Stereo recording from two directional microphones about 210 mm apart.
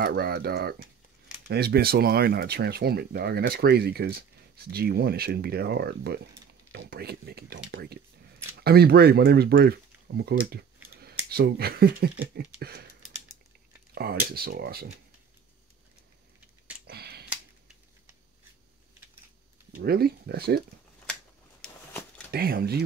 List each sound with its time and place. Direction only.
0.0 s speech: 50° right (ahead or behind)
13.9 s speech: 45° right (ahead or behind)
16.8 s a sound: 50° right (ahead or behind)
19.7 s speech: 45° right (ahead or behind)
22.3 s speech: 45° right (ahead or behind)